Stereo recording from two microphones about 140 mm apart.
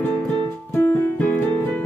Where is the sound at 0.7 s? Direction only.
15° left (ahead or behind).